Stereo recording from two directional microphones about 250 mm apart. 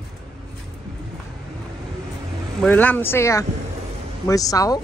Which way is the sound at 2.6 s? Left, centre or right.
Centre.